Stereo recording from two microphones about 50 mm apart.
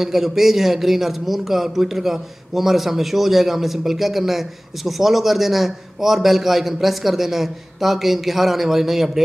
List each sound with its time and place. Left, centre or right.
0.0 s a man's voice: centre